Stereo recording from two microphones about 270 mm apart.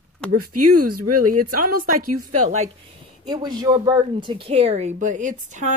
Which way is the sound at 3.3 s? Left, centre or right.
Centre.